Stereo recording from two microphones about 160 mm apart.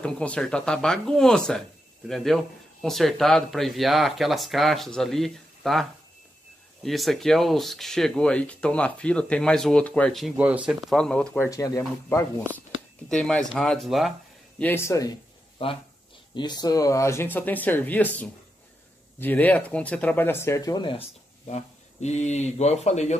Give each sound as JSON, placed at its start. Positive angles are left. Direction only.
{"t": 0.0, "sound": "speech", "side_deg": 5}
{"t": 13.1, "sound": "speech", "side_deg": 5}
{"t": 14.6, "sound": "speech", "side_deg": 15}
{"t": 16.3, "sound": "speech", "side_deg": 25}
{"t": 21.5, "sound": "speech", "side_deg": 45}